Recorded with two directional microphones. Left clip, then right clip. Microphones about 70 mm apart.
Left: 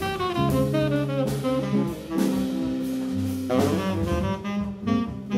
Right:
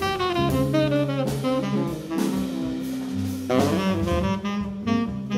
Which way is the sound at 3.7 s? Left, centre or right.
Right.